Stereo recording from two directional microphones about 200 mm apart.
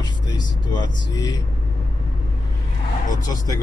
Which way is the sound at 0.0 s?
20° left (ahead or behind).